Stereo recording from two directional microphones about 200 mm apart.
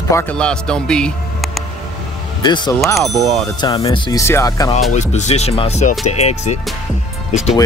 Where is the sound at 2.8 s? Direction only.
Centre (ahead or behind).